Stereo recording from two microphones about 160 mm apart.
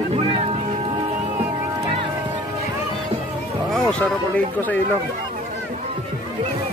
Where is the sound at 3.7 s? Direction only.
5° left (ahead or behind).